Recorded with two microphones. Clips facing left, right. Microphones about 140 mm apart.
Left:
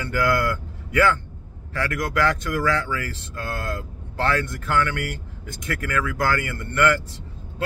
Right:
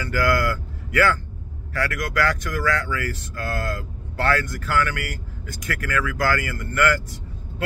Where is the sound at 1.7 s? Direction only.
25° left (ahead or behind).